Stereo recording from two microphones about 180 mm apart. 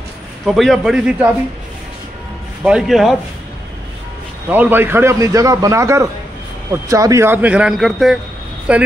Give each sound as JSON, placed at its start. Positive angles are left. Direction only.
{"t": 0.5, "sound": "speech", "side_deg": 0}
{"t": 2.6, "sound": "speech", "side_deg": -5}
{"t": 4.5, "sound": "a man's voice", "side_deg": -10}